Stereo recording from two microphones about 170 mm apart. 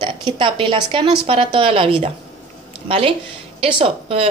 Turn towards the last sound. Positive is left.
turn(degrees=-35)  # may be behind; listen again after turning